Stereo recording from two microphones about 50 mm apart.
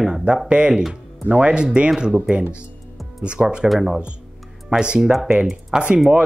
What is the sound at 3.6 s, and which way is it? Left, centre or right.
Speech, centre.